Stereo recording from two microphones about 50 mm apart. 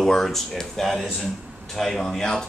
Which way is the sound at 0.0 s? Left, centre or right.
Centre.